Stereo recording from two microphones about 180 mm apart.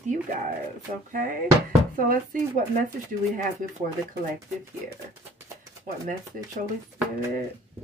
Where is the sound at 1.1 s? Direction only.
50° right (ahead or behind).